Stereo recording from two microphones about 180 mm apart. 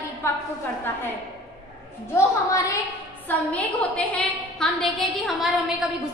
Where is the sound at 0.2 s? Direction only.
15° left (ahead or behind).